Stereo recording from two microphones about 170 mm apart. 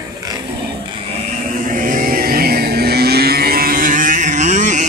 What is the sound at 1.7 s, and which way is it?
Vehicle, 50° right (ahead or behind).